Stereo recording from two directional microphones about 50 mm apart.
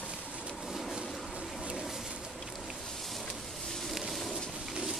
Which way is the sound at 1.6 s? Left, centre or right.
Centre.